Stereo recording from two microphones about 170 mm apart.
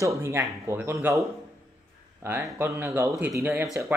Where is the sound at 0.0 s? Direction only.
15° right (ahead or behind).